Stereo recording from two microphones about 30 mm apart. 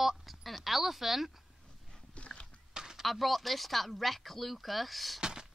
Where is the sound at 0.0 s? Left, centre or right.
Centre.